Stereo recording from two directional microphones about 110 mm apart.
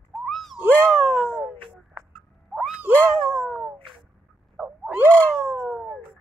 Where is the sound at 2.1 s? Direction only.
Centre (ahead or behind).